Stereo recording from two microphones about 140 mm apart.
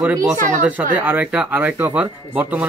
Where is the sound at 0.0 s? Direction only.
20° right (ahead or behind).